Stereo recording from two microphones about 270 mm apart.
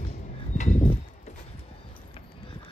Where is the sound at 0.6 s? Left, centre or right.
Left.